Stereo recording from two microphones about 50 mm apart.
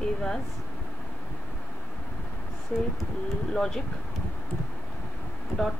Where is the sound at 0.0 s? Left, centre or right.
Centre.